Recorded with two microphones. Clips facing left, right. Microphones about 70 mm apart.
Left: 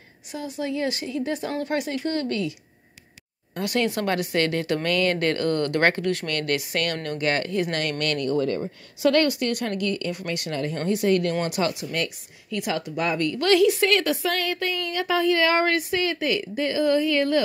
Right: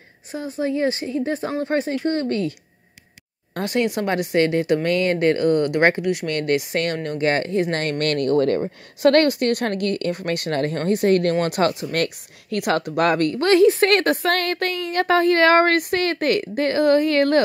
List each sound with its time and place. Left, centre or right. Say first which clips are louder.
0.3 s a woman's voice: right 5 dB; right
3.6 s speech: right 2 dB; right
8.0 s speech: right 6 dB; right
12.0 s speech: right 5 dB; right
13.3 s a woman's voice: right 2 dB; right
13.7 s speech: right 4 dB; right